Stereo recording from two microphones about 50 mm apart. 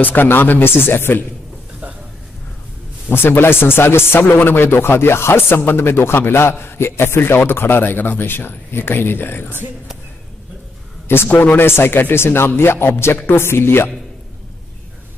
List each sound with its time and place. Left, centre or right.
0.0 s speech: left
3.1 s speech: left
11.2 s speech: left
11.5 s speech: left